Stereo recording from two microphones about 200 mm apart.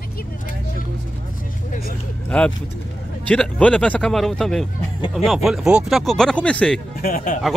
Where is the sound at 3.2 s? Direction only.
5° left (ahead or behind).